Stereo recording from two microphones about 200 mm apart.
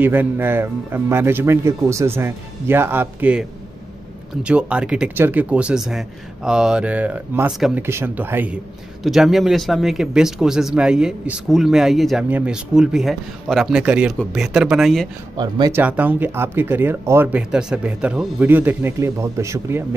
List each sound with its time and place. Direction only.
0.0 s speech: 10° right (ahead or behind)
15.3 s speech: 20° right (ahead or behind)
15.8 s speech: 10° right (ahead or behind)